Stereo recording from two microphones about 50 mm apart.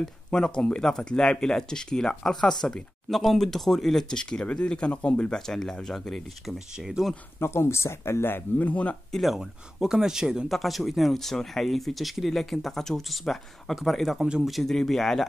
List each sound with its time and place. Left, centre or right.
0.0 s speech: centre
4.2 s speech: centre
7.0 s speech: centre
7.3 s speech: left
8.5 s speech: left
9.1 s speech: centre
10.5 s speech: centre